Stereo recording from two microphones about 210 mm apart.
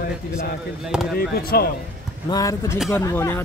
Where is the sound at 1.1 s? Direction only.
45° left (ahead or behind).